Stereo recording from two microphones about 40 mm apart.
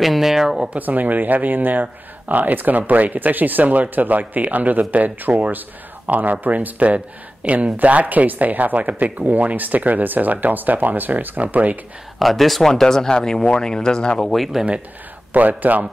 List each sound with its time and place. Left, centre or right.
0.0 s speech: centre
0.7 s speech: right
12.2 s speech: centre
12.8 s speech: centre
14.3 s speech: centre
15.3 s speech: right